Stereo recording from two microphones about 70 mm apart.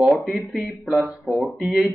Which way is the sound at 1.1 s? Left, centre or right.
Centre.